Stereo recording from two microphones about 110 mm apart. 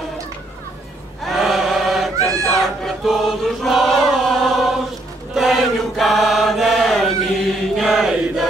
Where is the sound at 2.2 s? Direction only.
30° right (ahead or behind).